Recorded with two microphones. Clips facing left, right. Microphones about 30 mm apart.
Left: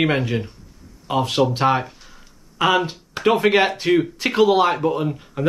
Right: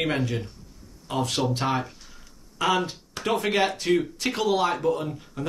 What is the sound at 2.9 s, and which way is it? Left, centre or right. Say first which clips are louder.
Speech: left 8 dB; left.